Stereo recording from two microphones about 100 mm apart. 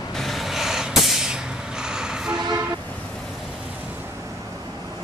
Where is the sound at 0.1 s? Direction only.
Centre (ahead or behind).